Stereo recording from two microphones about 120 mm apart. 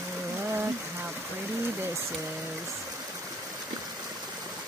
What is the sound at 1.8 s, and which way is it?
Speech, 20° right (ahead or behind).